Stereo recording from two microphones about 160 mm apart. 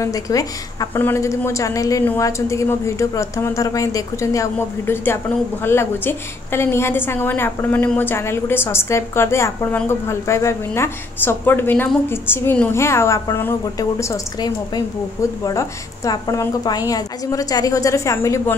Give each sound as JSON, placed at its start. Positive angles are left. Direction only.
{"t": 0.0, "sound": "a woman's voice", "side_deg": 20}